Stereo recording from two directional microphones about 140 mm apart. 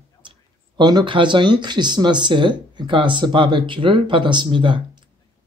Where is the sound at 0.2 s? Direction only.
35° right (ahead or behind).